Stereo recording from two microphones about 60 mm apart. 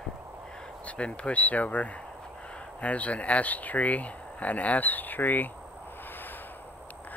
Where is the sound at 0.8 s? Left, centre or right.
Centre.